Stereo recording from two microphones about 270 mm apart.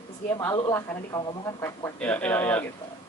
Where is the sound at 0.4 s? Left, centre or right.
Centre.